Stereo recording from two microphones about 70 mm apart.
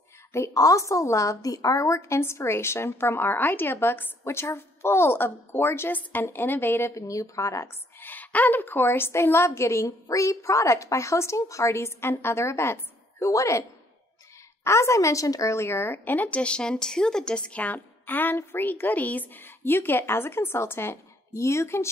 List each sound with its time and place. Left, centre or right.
0.3 s a woman's voice: left
7.0 s speech: left
8.0 s a woman's voice: left
13.3 s a woman's voice: left